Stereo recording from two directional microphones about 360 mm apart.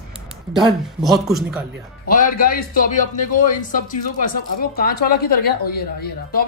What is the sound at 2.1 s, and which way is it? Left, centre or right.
Speech, left.